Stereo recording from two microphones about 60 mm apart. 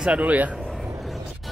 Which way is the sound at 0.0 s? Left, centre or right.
Right.